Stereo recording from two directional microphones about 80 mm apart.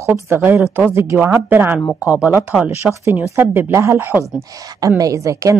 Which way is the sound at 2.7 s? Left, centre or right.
Right.